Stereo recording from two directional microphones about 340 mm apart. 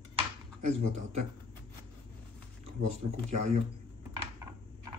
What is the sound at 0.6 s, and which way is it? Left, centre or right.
Speech, centre.